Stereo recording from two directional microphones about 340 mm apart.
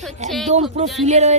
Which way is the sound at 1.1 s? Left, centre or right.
Centre.